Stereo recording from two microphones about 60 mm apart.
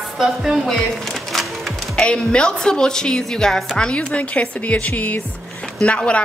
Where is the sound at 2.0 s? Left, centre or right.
Centre.